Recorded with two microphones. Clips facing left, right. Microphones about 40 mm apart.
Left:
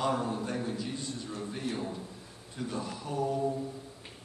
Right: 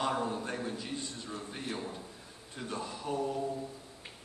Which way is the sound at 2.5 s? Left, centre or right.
Right.